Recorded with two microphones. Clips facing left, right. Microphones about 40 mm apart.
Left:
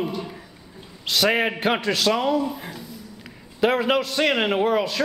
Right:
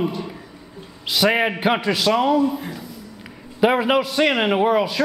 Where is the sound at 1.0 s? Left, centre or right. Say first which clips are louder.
Right 2 dB; centre.